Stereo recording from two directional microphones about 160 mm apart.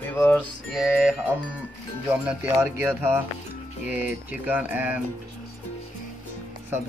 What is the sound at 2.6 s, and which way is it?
Speech, 10° right (ahead or behind).